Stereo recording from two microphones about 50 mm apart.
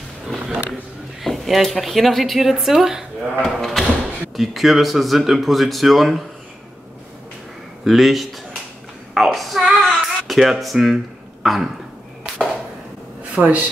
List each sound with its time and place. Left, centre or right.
1.2 s speech: centre
3.6 s speech: centre
7.8 s a woman's voice: centre
9.6 s child singing: centre
10.6 s speech: centre
13.4 s speech: right